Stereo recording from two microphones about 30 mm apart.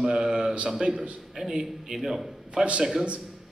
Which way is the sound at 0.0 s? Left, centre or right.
Right.